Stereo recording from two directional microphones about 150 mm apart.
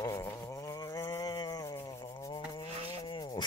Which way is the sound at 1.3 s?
25° left (ahead or behind).